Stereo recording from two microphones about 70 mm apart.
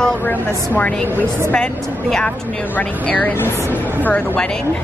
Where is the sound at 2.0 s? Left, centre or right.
Centre.